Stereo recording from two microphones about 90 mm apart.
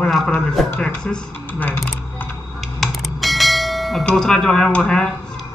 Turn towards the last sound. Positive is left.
turn(degrees=10)  # may be behind; listen again after turning